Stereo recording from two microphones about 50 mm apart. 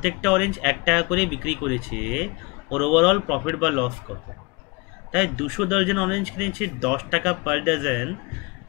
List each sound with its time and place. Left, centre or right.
0.2 s speech: centre